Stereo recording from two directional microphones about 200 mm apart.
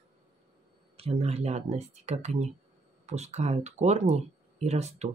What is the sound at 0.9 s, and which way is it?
Speech, 30° right (ahead or behind).